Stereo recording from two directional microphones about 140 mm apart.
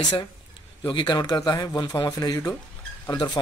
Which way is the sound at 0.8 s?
35° left (ahead or behind).